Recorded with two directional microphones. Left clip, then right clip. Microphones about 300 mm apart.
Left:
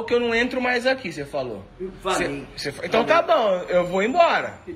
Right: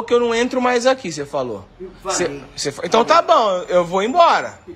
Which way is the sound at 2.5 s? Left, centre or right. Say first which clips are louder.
Right 6 dB; right.